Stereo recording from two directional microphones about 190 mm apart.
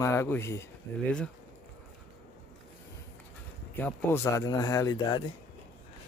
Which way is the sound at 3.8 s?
10° left (ahead or behind).